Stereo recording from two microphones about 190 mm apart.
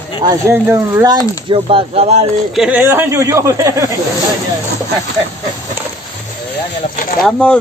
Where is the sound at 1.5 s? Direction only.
30° right (ahead or behind).